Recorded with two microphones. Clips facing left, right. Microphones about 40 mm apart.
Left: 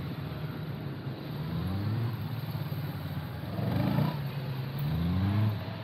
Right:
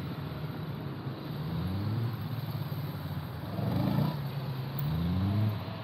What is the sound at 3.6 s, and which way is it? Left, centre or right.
Vehicle, centre.